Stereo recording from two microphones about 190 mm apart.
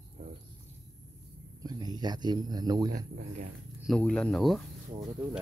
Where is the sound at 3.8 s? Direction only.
5° left (ahead or behind).